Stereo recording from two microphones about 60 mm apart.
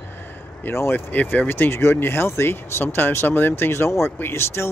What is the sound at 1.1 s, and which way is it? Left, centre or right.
Speech, left.